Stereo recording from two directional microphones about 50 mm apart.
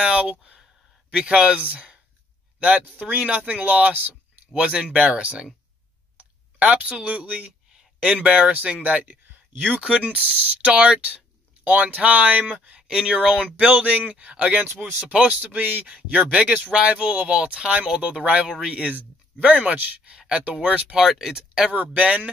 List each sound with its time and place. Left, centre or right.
0.0 s speech: right
3.0 s speech: right
4.6 s speech: centre
12.8 s speech: centre
20.1 s speech: right
20.9 s speech: centre
21.7 s speech: right